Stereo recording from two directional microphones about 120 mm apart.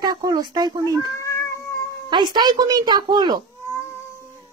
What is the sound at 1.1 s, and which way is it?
Cat, 25° left (ahead or behind).